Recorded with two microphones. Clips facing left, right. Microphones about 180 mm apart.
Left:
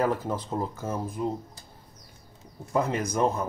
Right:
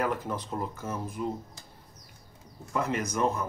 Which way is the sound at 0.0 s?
30° left (ahead or behind).